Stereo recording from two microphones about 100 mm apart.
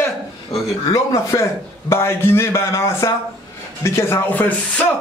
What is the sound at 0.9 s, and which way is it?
Speech, 35° left (ahead or behind).